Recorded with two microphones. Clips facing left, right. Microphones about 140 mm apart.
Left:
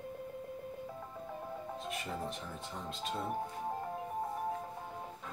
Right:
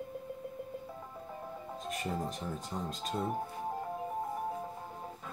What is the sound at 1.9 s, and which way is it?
Speech, 40° right (ahead or behind).